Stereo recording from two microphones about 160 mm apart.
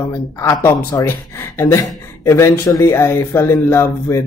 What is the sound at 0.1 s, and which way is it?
Speech, 15° left (ahead or behind).